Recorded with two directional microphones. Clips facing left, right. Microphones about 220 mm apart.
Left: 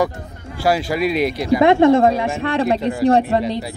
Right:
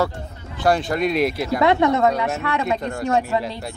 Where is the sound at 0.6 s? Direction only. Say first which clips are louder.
Left 1 dB; 5° left (ahead or behind).